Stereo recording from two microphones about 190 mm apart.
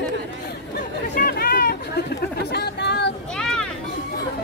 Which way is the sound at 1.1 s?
50° left (ahead or behind).